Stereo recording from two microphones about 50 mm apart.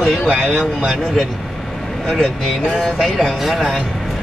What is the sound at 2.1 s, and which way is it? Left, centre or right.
Speech, centre.